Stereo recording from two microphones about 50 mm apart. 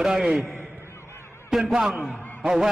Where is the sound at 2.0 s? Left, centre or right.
Left.